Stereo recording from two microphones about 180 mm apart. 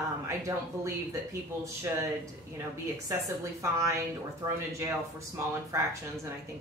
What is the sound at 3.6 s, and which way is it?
Speech, 15° right (ahead or behind).